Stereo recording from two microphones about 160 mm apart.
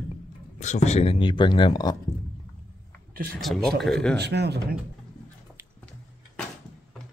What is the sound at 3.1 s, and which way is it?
Speech, 70° right (ahead or behind).